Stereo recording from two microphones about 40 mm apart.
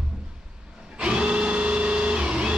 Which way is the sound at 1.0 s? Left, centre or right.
Right.